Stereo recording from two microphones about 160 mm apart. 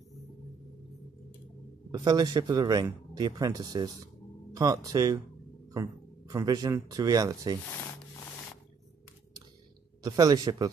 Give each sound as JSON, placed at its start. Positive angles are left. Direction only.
{"t": 1.9, "sound": "speech", "side_deg": -25}
{"t": 10.0, "sound": "speech", "side_deg": -25}